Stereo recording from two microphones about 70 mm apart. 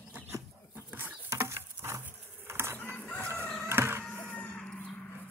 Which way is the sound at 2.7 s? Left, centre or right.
Left.